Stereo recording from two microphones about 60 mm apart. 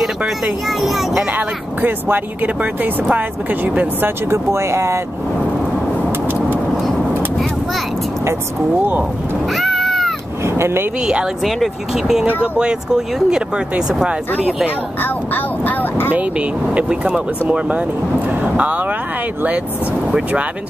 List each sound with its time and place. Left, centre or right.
0.7 s speech: centre
1.3 s speech: right
4.3 s speech: right
9.5 s cat: centre
10.4 s speech: right
11.0 s speech: centre
11.4 s speech: centre
15.0 s speech: left
16.1 s speech: right
20.1 s speech: centre